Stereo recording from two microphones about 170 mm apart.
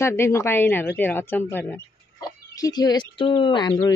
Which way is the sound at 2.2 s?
20° left (ahead or behind).